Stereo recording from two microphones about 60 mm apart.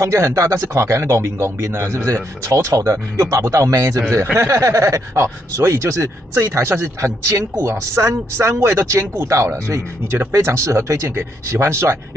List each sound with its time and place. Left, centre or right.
0.0 s speech: right